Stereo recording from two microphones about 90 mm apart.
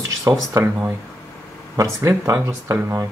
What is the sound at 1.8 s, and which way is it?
Speech, 30° right (ahead or behind).